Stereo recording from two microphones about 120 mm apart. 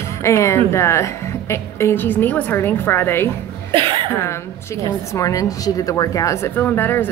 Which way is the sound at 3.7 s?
45° right (ahead or behind).